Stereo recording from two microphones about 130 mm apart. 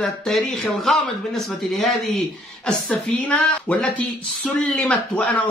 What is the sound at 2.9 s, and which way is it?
Speech, 10° left (ahead or behind).